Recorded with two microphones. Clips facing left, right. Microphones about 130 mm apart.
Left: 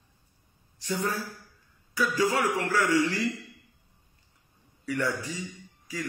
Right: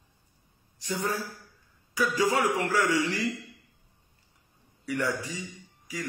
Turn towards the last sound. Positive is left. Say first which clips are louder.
# left 1 dB
turn(degrees=-15)  # may be behind; listen again after turning